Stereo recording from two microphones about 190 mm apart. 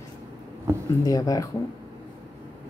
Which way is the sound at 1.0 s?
20° left (ahead or behind).